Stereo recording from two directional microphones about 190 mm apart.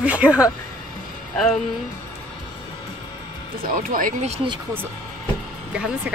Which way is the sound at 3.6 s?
45° right (ahead or behind).